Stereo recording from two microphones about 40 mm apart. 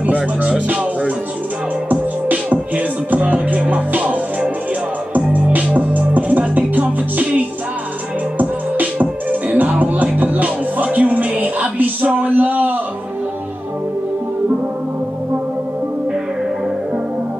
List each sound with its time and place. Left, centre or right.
0.0 s speech: right
1.9 s music: right
5.1 s music: right
12.2 s a sound: right